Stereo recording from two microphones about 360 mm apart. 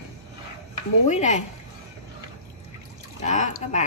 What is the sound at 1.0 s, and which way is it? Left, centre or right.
Speech, centre.